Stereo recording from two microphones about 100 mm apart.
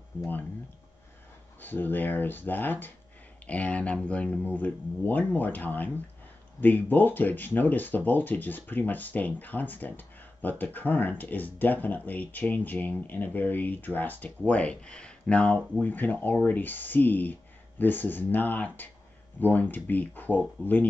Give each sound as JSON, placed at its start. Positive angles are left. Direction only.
{"t": 1.6, "sound": "speech", "side_deg": 20}